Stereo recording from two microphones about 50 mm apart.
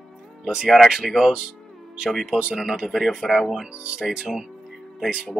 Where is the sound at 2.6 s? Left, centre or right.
Centre.